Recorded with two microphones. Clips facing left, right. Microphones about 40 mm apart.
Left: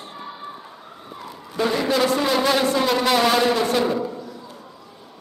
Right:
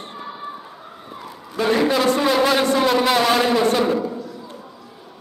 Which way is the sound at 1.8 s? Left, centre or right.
Centre.